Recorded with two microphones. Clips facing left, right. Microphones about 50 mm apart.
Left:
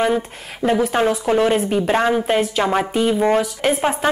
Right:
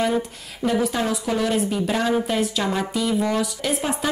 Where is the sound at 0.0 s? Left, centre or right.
Left.